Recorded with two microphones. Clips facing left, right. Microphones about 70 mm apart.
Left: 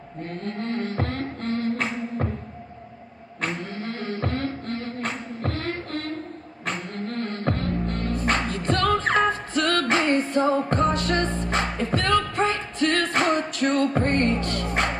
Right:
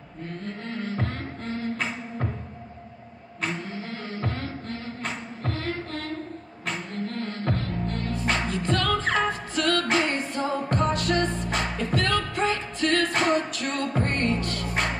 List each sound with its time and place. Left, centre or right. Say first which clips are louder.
0.3 s music: left 5 dB; left
3.3 s music: left 2 dB; left